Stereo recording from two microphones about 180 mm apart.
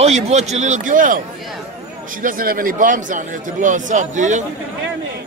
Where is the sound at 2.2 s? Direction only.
50° right (ahead or behind).